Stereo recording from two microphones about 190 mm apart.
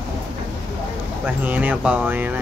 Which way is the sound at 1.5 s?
10° right (ahead or behind).